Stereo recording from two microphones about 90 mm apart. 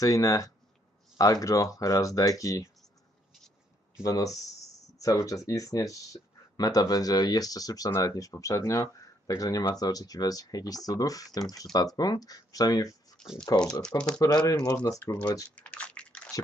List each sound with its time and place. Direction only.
0.0 s speech: 40° left (ahead or behind)
4.0 s speech: 40° left (ahead or behind)
13.8 s speech: 10° left (ahead or behind)
14.2 s speech: 40° left (ahead or behind)
15.5 s typing: 15° left (ahead or behind)